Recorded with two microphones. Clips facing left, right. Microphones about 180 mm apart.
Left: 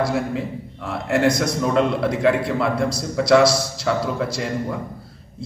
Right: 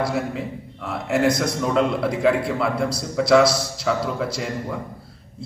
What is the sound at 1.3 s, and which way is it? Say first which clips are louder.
Speech: left 1 dB; 25° right (ahead or behind).